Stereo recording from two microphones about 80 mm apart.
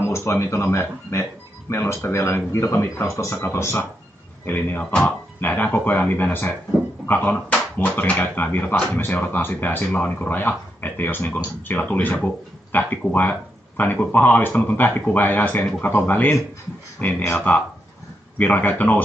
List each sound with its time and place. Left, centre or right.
0.1 s speech: left